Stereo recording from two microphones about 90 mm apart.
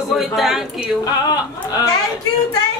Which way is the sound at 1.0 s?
45° left (ahead or behind).